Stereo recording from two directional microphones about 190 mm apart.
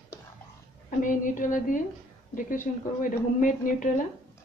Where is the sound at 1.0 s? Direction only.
45° left (ahead or behind).